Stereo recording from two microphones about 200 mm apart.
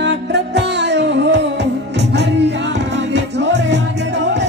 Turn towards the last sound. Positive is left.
turn(degrees=-60)  # may be behind; listen again after turning